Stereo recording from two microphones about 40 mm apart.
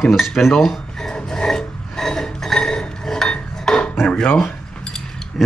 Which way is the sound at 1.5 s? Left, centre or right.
Centre.